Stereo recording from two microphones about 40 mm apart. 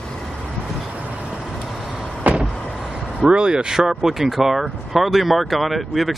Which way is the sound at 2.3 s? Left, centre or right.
Right.